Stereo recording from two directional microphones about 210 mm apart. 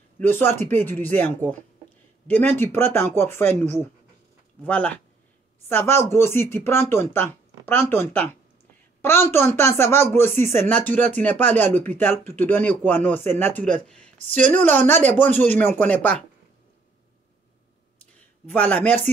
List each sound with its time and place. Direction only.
0.2 s speech: 10° left (ahead or behind)
18.5 s speech: 5° left (ahead or behind)